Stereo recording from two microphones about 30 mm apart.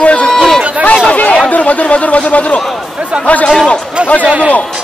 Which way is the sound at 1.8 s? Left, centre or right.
Left.